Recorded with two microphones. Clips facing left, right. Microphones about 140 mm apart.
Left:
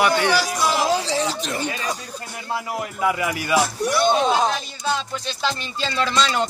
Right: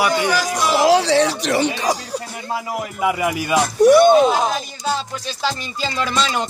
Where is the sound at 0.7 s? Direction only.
75° right (ahead or behind).